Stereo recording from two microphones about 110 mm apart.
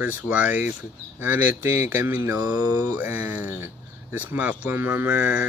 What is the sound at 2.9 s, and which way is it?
Speech, 20° right (ahead or behind).